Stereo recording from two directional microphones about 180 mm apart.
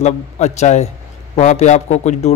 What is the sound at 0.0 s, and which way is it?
Speech, 40° left (ahead or behind).